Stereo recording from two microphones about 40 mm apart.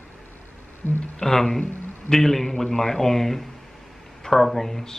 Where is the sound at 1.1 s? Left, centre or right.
Centre.